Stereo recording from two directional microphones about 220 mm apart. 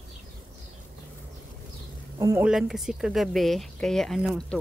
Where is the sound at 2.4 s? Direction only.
Centre (ahead or behind).